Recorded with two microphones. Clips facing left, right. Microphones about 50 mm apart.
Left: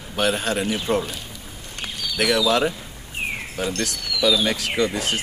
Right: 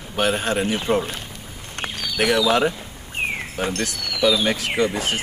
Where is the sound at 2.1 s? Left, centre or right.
Right.